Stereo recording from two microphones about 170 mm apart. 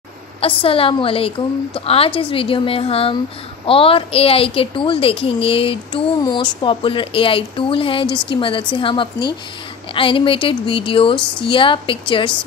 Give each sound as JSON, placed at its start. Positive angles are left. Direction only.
{"t": 0.4, "sound": "a woman's voice", "side_deg": 30}